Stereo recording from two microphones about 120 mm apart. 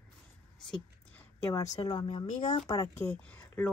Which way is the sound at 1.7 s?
35° left (ahead or behind).